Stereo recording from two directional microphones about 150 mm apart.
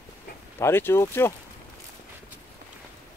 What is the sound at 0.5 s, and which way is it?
Speech, 15° left (ahead or behind).